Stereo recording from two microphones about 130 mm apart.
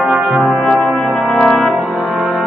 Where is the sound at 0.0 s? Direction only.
5° right (ahead or behind).